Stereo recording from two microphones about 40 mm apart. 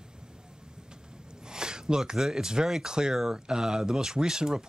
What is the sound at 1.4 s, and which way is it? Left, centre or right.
Speech, centre.